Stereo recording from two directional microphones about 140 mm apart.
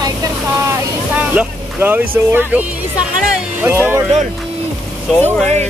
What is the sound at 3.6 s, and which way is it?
Speech, 15° right (ahead or behind).